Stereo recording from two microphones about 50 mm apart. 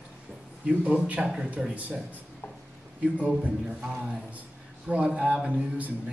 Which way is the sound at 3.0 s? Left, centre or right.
Right.